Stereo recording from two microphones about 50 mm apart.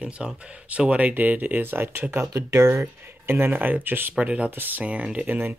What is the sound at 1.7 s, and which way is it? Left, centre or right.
Speech, right.